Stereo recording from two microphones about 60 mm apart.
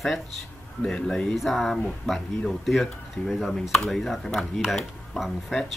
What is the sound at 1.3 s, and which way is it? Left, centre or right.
Speech, centre.